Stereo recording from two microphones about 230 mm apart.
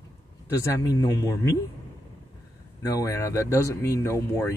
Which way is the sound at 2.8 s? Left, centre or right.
Centre.